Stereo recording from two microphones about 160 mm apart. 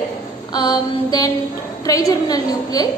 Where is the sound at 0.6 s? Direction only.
25° left (ahead or behind).